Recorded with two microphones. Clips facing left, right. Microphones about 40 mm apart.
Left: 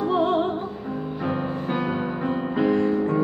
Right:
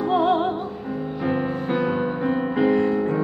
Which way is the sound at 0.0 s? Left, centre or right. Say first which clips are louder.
Right 2 dB; right.